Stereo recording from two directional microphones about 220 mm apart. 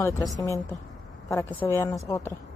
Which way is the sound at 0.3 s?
15° left (ahead or behind).